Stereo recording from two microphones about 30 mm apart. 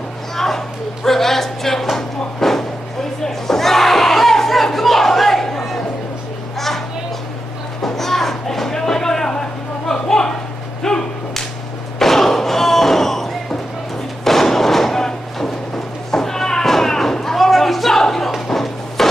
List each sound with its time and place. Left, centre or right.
1.0 s music: centre
4.7 s a sound: centre
7.8 s music: centre
10.8 s whip: centre
12.0 s thump: centre
16.1 s a sound: centre